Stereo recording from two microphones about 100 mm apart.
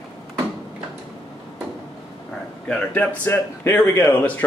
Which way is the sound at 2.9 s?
20° left (ahead or behind).